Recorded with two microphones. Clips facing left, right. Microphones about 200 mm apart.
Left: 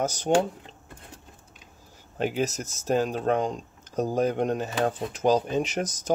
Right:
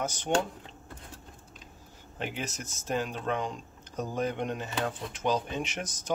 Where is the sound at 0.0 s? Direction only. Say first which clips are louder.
Left 6 dB; 40° left (ahead or behind).